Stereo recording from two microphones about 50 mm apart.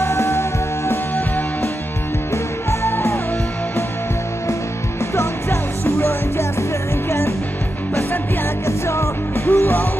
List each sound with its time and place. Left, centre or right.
0.0 s music: left
5.1 s music: left
8.6 s music: left
9.5 s music: left